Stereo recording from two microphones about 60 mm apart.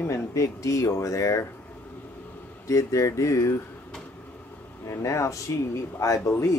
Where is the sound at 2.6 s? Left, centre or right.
Left.